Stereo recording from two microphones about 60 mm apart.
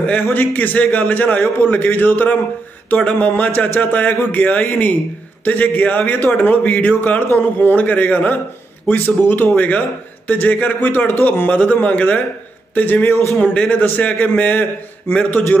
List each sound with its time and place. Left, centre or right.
0.0 s a man's voice: left
3.0 s a man's voice: left
11.4 s a man's voice: left
13.4 s a man's voice: centre
15.1 s a man's voice: left